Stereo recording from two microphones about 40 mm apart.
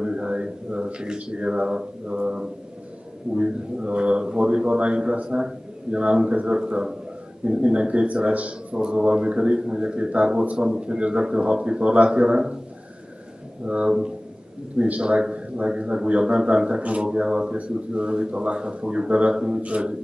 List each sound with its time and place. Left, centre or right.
0.0 s a man's voice: right
8.7 s a man's voice: right
13.7 s a man's voice: right
19.6 s a man's voice: right